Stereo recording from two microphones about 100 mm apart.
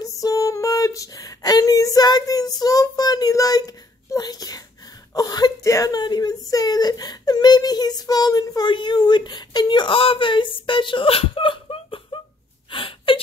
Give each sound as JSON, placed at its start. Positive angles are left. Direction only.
{"t": 0.0, "sound": "a sound", "side_deg": 35}
{"t": 5.7, "sound": "speech", "side_deg": 35}
{"t": 12.7, "sound": "whimper", "side_deg": 60}